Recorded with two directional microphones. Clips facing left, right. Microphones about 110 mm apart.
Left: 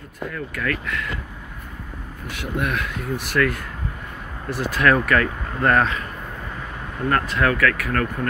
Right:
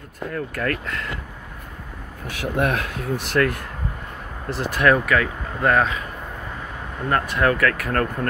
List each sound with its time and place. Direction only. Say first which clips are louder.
0.3 s speech: right 2 dB; 40° right (ahead or behind)
2.6 s speech: right 4 dB; 40° right (ahead or behind)
4.5 s speech: right 1 dB; 20° right (ahead or behind)
4.9 s speech: left 1 dB; 5° right (ahead or behind)
7.1 s speech: even; 15° right (ahead or behind)
7.9 s speech: right 1 dB; 40° right (ahead or behind)